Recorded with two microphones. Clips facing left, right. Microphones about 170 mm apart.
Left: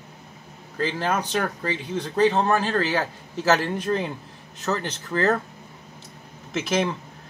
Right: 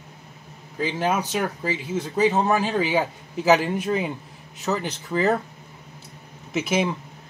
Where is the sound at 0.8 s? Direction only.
10° right (ahead or behind).